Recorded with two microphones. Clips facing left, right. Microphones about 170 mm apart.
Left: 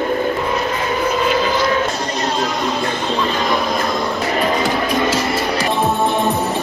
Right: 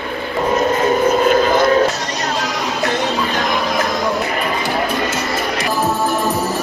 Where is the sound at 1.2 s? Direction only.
50° right (ahead or behind).